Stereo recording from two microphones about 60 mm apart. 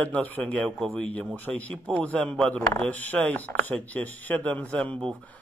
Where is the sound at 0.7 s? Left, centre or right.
Centre.